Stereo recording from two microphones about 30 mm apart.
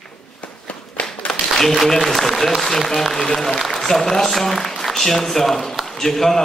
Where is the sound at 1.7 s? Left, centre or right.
Centre.